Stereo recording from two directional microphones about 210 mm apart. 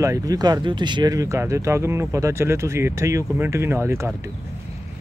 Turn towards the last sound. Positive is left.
turn(degrees=-10)  # may be behind; listen again after turning